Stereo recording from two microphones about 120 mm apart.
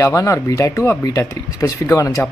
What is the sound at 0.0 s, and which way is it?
Speech, 25° left (ahead or behind).